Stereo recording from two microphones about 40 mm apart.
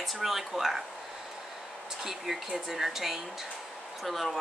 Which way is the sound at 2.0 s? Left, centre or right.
Centre.